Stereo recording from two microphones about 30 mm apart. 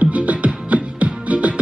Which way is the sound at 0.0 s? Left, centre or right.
Right.